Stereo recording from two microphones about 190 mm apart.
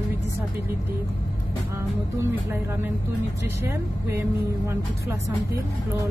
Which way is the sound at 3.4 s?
15° right (ahead or behind).